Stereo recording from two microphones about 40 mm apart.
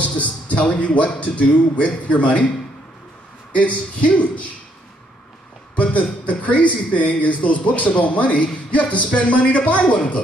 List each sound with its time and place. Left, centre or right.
0.0 s speech: left
3.5 s speech: left
5.8 s speech: left